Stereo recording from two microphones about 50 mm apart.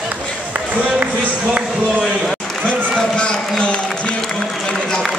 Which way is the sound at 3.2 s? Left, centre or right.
Centre.